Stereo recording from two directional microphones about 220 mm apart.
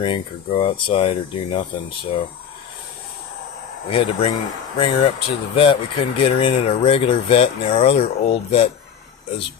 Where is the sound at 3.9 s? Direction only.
25° left (ahead or behind).